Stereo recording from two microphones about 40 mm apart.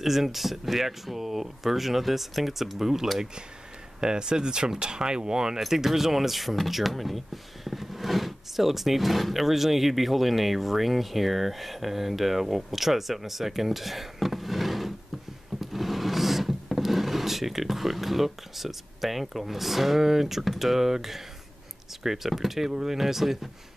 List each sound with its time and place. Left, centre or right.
0.0 s speech: centre
4.0 s speech: centre
5.6 s speech: centre